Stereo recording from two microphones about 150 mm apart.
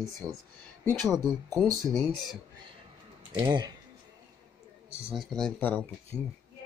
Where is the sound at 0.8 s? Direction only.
25° right (ahead or behind).